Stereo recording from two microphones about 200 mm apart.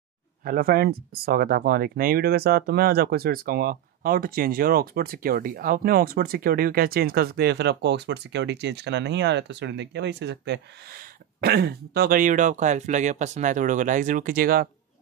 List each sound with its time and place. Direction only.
0.4 s speech: 45° right (ahead or behind)